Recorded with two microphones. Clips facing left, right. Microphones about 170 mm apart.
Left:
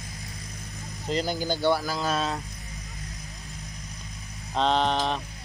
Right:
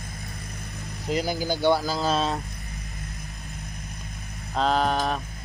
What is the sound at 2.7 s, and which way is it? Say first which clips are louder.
Vehicle: right 2 dB; 65° right (ahead or behind).